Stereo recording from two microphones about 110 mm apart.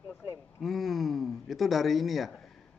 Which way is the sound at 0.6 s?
Centre (ahead or behind).